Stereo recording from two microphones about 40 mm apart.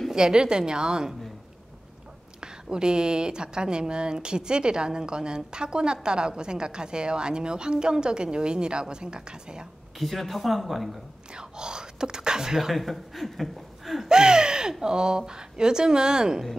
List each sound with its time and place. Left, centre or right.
0.1 s speech: centre
2.4 s speech: centre
9.9 s speech: centre
11.3 s speech: centre
12.7 s speech: centre
14.0 s speech: centre